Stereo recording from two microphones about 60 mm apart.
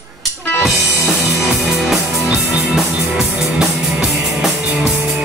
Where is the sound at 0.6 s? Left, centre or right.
Centre.